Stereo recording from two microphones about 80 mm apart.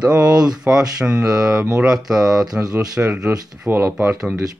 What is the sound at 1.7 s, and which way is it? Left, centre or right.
Speech, centre.